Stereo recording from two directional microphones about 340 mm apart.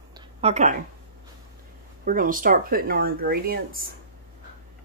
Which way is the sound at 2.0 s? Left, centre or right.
Right.